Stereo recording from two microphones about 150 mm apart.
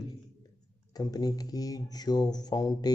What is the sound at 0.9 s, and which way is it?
Speech, 25° left (ahead or behind).